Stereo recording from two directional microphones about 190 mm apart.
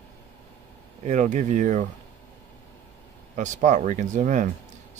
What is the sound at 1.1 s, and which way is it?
Speech, 40° right (ahead or behind).